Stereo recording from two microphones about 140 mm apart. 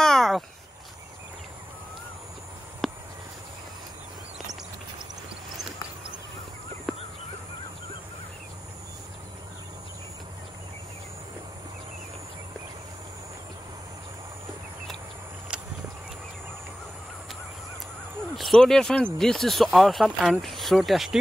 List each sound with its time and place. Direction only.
0.0 s a sound: centre (ahead or behind)
6.9 s crow: 5° left (ahead or behind)
18.3 s speech: centre (ahead or behind)